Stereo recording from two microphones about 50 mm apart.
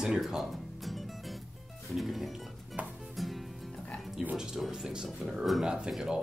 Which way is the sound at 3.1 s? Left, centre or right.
Centre.